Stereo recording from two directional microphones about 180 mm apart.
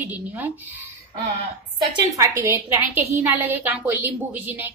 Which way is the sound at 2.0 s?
15° right (ahead or behind).